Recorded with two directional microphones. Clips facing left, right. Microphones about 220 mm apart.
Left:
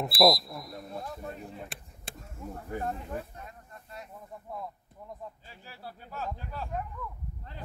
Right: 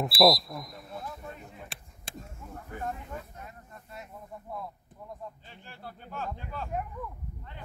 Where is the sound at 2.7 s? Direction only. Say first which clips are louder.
Left 3 dB; 30° left (ahead or behind).